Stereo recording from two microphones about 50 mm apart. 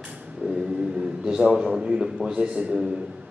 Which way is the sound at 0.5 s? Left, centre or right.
Centre.